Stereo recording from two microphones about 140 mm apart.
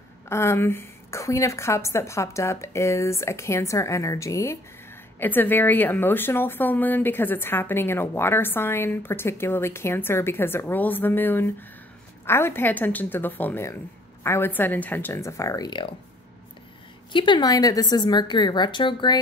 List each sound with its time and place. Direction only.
0.3 s a woman's voice: 20° left (ahead or behind)
17.1 s a woman's voice: 35° left (ahead or behind)